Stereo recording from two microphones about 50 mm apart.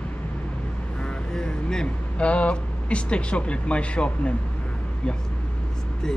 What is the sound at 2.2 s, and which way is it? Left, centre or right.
Speech, left.